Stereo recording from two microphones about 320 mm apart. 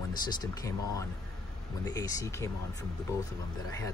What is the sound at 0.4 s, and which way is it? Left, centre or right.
Speech, centre.